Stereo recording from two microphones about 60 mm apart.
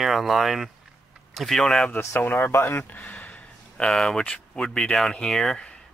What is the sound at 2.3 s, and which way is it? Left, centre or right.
Speech, left.